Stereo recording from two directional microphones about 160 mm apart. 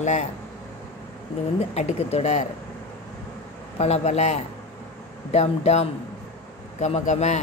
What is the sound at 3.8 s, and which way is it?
A man's voice, 40° left (ahead or behind).